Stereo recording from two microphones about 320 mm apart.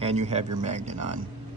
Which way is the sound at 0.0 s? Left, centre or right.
Centre.